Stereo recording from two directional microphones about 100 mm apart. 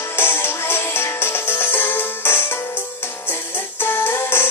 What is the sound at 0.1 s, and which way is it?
Music, 25° left (ahead or behind).